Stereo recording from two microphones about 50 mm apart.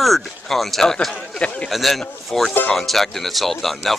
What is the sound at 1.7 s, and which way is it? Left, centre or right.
Speech, centre.